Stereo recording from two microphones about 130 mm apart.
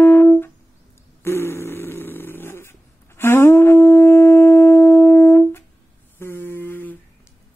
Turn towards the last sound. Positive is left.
turn(degrees=15)  # may be behind; listen again after turning